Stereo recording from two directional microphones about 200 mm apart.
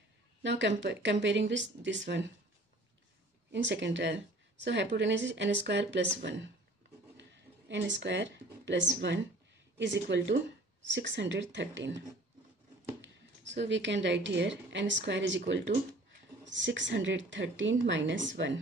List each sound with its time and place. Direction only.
0.4 s speech: 65° right (ahead or behind)
3.5 s speech: 65° right (ahead or behind)
13.0 s a woman's voice: 65° right (ahead or behind)